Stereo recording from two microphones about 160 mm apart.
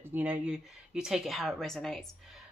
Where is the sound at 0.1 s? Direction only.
10° right (ahead or behind).